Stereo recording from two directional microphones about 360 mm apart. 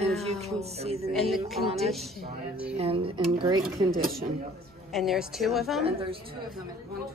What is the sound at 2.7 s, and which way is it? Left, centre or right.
Speech, centre.